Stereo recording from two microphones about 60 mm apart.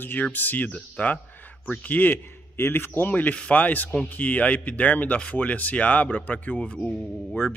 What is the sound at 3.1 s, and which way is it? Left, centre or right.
Speech, left.